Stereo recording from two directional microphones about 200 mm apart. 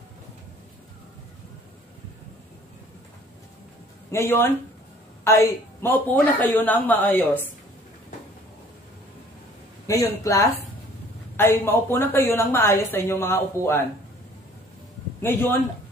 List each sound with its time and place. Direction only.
4.1 s a woman's voice: 10° left (ahead or behind)
9.8 s a woman's voice: 15° left (ahead or behind)
15.2 s a woman's voice: 10° left (ahead or behind)